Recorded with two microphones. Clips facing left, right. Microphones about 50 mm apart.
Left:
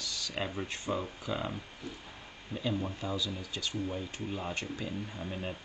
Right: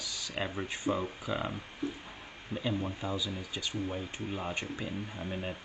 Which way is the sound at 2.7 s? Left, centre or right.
Centre.